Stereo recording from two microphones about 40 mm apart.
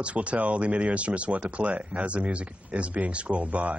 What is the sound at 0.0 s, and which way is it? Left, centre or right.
Speech, right.